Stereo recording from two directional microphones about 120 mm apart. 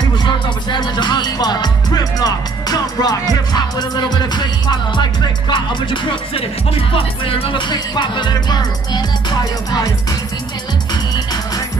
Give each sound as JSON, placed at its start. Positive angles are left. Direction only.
{"t": 0.0, "sound": "music", "side_deg": 40}